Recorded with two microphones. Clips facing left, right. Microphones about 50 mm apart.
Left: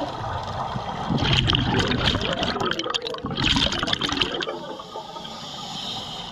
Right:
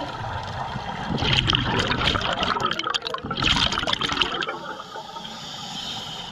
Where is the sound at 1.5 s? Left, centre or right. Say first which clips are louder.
Even; centre.